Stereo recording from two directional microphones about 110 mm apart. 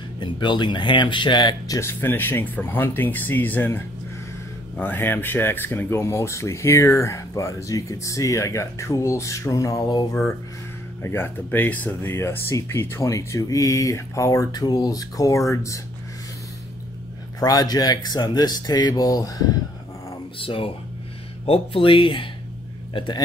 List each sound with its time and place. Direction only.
0.2 s speech: 45° left (ahead or behind)
1.8 s speech: 20° left (ahead or behind); by 10.0 s 35° left (ahead or behind)
11.0 s speech: 20° left (ahead or behind)
17.4 s speech: 35° left (ahead or behind)
20.4 s speech: 55° left (ahead or behind)